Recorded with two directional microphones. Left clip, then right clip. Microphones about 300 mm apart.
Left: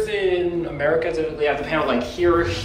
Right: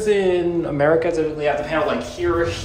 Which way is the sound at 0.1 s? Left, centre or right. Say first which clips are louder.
Right 3 dB; right.